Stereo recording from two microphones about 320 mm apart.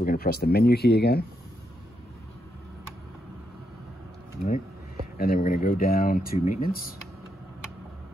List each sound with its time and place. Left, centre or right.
0.0 s speech: left
5.1 s speech: left